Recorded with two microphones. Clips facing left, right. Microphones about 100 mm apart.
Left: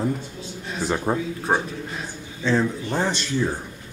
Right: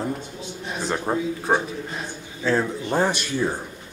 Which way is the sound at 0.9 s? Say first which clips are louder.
Even; centre (ahead or behind).